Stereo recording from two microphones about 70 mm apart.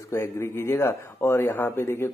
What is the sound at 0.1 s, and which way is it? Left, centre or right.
Speech, left.